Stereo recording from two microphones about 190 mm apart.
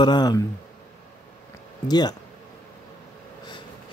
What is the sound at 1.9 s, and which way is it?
Speech, 20° left (ahead or behind).